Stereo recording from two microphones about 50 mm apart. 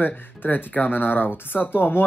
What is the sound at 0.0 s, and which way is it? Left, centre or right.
Speech, left.